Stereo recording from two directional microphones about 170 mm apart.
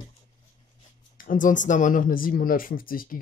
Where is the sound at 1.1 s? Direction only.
55° left (ahead or behind).